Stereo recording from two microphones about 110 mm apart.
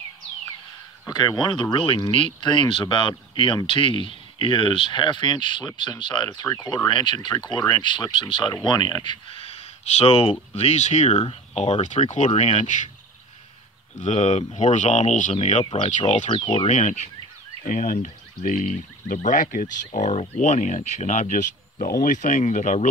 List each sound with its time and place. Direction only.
1.0 s speech: 35° left (ahead or behind)
6.4 s speech: 30° left (ahead or behind)
6.9 s speech: 45° left (ahead or behind)
9.4 s a sound: 65° left (ahead or behind)
10.5 s speech: 75° left (ahead or behind)
14.0 s speech: 90° left
15.7 s speech: 55° left (ahead or behind); by 16.3 s 85° left
16.3 s speech: 50° left (ahead or behind)
16.6 s speech: 90° left
19.1 s speech: 90° left